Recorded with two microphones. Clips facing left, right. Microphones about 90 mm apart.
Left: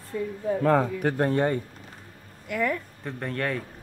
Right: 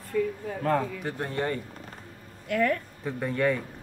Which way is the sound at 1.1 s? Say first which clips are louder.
Left 10 dB; 45° left (ahead or behind).